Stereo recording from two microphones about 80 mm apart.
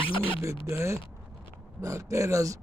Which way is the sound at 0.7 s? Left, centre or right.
Right.